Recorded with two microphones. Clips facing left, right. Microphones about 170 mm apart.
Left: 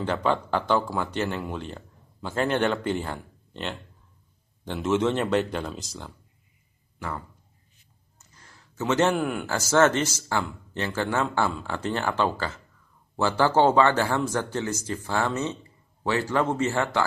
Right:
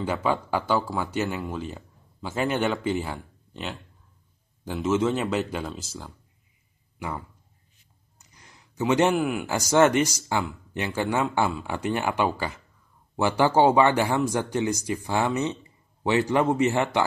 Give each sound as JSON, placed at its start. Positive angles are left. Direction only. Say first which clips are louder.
{"t": 0.0, "sound": "speech", "louder": "left 1 dB", "side_deg": -5}
{"t": 7.0, "sound": "speech", "louder": "right 1 dB", "side_deg": -15}
{"t": 8.2, "sound": "a sound", "louder": "even", "side_deg": -15}
{"t": 9.1, "sound": "speech", "louder": "right 2 dB", "side_deg": -5}